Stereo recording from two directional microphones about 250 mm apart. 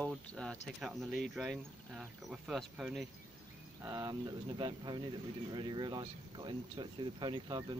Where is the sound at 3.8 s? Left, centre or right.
Centre.